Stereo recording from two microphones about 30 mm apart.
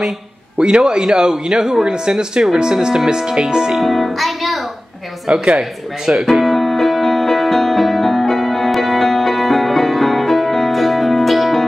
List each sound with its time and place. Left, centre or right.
0.6 s speech: right
3.7 s speech: centre
5.3 s speech: right
6.1 s music: centre